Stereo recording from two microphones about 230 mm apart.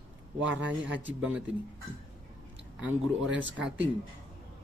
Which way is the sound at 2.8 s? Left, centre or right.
Centre.